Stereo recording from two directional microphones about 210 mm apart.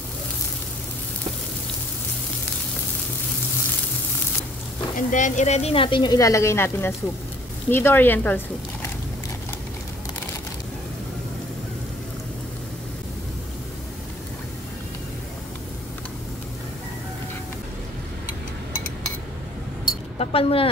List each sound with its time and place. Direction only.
4.9 s speech: 35° left (ahead or behind); by 8.4 s 10° left (ahead or behind)
20.2 s speech: 25° left (ahead or behind)